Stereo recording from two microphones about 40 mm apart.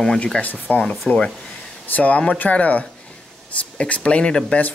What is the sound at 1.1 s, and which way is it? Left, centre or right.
Speech, centre.